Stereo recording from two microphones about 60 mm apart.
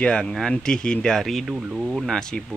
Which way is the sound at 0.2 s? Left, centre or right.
Centre.